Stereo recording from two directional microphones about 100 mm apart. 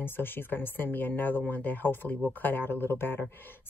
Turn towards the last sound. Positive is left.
turn(degrees=20)  # may be behind; listen again after turning